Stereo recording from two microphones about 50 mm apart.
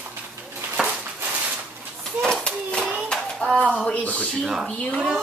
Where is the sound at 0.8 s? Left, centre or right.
Right.